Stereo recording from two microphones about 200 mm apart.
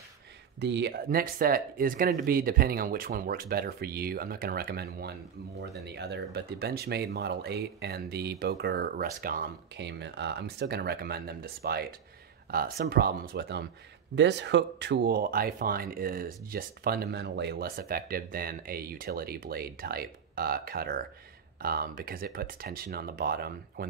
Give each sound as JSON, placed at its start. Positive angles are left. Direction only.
{"t": 0.6, "sound": "speech", "side_deg": -60}